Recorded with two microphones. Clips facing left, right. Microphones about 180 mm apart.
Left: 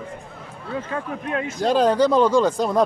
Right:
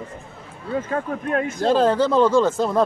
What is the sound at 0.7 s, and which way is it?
Speech, 45° right (ahead or behind).